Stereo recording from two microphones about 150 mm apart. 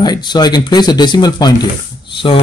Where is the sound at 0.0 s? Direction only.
30° left (ahead or behind).